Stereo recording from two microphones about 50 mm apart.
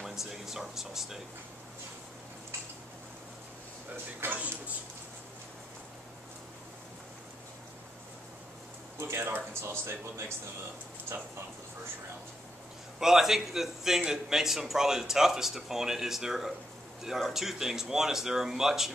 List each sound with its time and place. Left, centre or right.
0.0 s speech: centre
3.9 s speech: right
9.0 s speech: right
13.0 s a man's voice: centre